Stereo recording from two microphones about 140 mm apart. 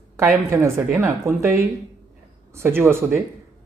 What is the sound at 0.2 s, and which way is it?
Speech, 20° right (ahead or behind).